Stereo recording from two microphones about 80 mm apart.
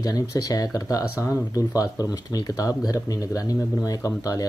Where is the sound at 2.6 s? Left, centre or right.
Left.